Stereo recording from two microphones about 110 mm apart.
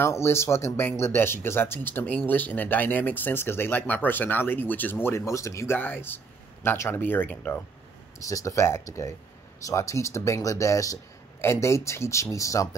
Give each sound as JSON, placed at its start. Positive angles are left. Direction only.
{"t": 0.0, "sound": "speech", "side_deg": 25}
{"t": 8.2, "sound": "speech", "side_deg": 30}